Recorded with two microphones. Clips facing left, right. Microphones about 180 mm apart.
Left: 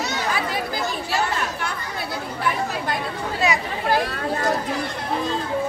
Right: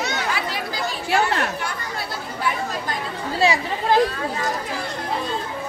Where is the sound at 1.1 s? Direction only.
65° right (ahead or behind).